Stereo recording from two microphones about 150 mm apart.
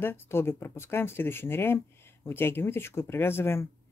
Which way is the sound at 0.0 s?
15° left (ahead or behind).